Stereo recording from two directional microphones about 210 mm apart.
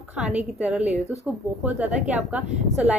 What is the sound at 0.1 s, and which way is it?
A woman's voice, 5° right (ahead or behind).